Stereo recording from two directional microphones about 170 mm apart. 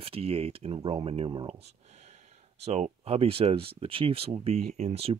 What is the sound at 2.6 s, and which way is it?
Speech, 40° right (ahead or behind).